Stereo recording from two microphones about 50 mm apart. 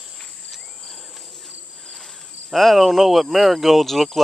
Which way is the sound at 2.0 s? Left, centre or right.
Centre.